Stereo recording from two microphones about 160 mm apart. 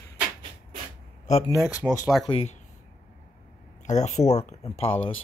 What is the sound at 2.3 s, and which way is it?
Speech, 40° left (ahead or behind).